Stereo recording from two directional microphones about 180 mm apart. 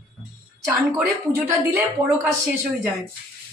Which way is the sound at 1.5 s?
15° right (ahead or behind).